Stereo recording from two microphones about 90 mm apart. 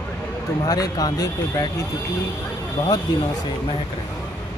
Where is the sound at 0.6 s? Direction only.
45° left (ahead or behind).